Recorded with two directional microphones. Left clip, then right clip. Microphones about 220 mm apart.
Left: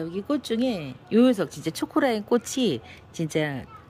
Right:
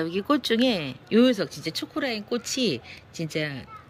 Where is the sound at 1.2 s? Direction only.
15° left (ahead or behind).